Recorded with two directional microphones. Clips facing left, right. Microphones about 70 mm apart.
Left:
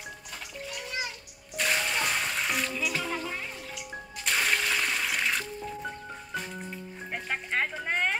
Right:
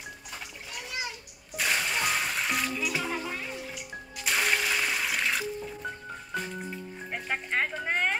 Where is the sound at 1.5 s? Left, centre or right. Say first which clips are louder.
Even; centre.